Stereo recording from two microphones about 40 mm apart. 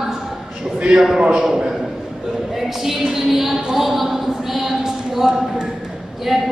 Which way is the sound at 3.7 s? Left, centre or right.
Centre.